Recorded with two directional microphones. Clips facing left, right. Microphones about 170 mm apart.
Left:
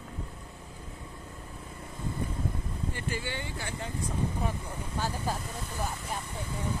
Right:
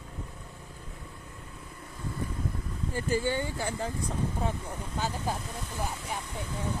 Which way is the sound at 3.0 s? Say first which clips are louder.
Right 11 dB; 40° right (ahead or behind).